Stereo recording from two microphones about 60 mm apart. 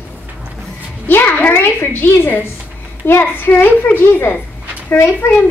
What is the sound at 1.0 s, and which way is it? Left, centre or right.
A woman's voice, left.